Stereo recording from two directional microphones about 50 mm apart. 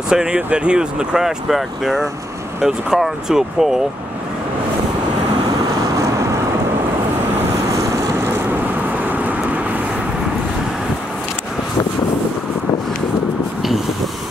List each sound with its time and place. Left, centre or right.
0.1 s speech: centre
9.1 s vehicle: right